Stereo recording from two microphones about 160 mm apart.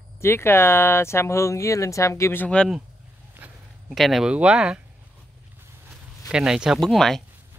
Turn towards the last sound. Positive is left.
turn(degrees=0)  # may be behind; listen again after turning